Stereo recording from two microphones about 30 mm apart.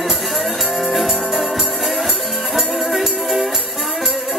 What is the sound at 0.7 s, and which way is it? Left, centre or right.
Music, centre.